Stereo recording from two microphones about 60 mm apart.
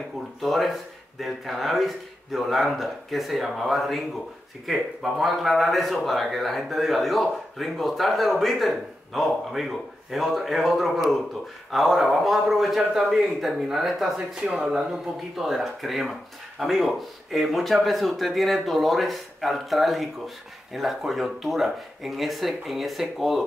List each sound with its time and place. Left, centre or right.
0.4 s speech: centre